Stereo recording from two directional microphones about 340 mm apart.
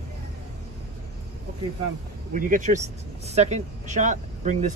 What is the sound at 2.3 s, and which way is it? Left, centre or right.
Speech, right.